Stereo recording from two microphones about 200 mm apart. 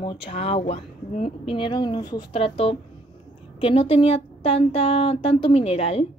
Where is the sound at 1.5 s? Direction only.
25° left (ahead or behind).